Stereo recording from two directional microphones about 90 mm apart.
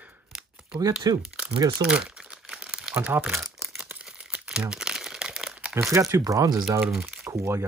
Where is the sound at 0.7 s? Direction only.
40° right (ahead or behind).